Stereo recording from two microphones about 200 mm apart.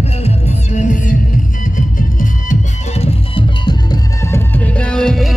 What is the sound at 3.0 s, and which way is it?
Music, 25° left (ahead or behind).